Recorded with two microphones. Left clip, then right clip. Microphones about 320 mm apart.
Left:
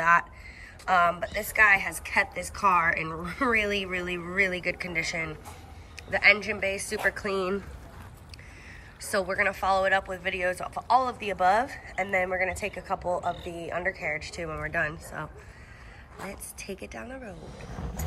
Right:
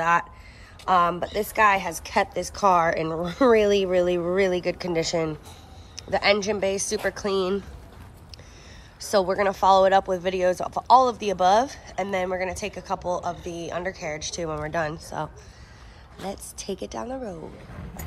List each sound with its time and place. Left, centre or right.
0.0 s a woman's voice: centre
9.0 s speech: centre
16.6 s a woman's voice: right
16.9 s a woman's voice: centre